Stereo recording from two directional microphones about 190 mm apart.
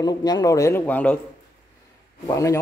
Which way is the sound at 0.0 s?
20° left (ahead or behind).